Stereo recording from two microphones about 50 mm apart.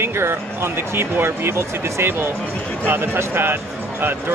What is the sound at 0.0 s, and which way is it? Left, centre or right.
Speech, right.